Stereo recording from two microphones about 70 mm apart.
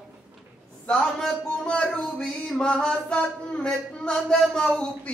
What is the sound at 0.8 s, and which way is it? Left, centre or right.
A man's voice, centre.